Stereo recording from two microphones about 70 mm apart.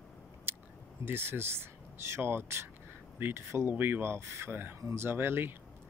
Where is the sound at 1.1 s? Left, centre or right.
Right.